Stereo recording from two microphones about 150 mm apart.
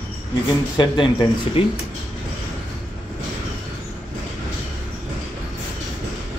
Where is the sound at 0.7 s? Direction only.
30° left (ahead or behind).